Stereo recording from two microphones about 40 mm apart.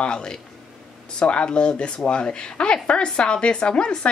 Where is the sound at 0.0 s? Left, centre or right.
Left.